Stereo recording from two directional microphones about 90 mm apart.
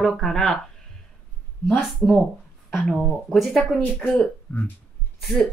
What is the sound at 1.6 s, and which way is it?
Speech, centre (ahead or behind).